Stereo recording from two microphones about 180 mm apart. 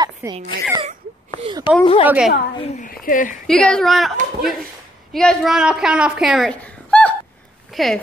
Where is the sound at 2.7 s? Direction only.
50° left (ahead or behind).